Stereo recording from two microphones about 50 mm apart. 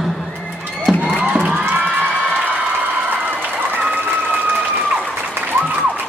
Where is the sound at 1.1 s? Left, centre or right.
Right.